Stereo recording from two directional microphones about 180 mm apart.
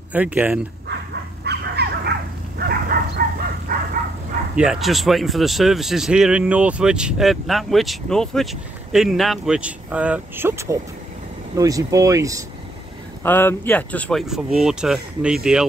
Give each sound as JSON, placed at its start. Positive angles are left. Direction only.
{"t": 0.1, "sound": "speech", "side_deg": -10}
{"t": 1.4, "sound": "dog", "side_deg": -65}
{"t": 2.7, "sound": "bow-wow", "side_deg": -55}
{"t": 4.6, "sound": "speech", "side_deg": 0}
{"t": 13.2, "sound": "speech", "side_deg": 10}